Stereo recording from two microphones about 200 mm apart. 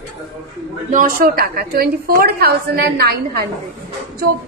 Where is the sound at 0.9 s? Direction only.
45° right (ahead or behind).